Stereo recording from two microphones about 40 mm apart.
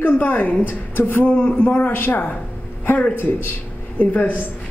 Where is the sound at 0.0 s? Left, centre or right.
Left.